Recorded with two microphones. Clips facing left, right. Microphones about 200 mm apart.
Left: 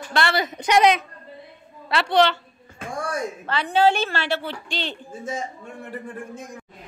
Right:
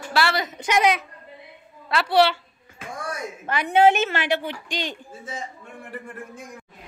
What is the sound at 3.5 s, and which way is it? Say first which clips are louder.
A woman's voice: right 2 dB; 20° right (ahead or behind).